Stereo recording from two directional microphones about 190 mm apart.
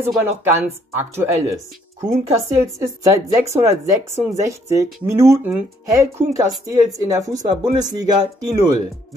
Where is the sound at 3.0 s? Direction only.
15° right (ahead or behind).